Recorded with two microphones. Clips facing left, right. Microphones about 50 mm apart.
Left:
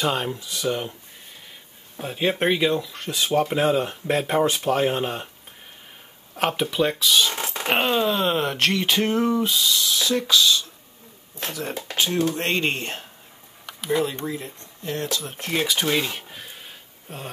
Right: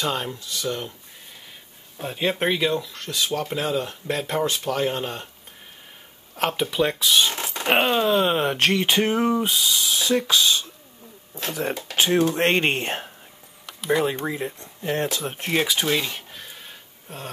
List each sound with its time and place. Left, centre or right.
0.0 s speech: centre
2.0 s speech: centre
6.3 s speech: centre; by 10.7 s right
11.9 s speech: right
15.5 s speech: centre
15.9 s a sound: centre